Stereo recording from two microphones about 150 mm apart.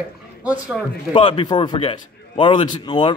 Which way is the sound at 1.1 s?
35° left (ahead or behind).